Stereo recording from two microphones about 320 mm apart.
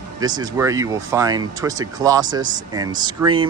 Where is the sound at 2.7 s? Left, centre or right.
Centre.